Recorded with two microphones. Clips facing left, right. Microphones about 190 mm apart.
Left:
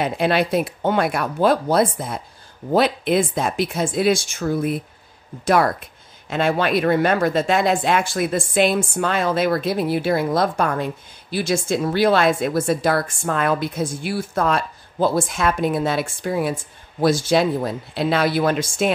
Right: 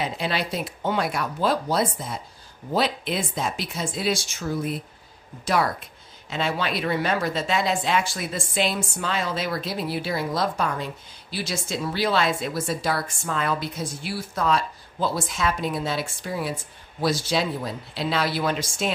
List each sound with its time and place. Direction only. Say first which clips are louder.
0.0 s speech: left 8 dB; 55° left (ahead or behind)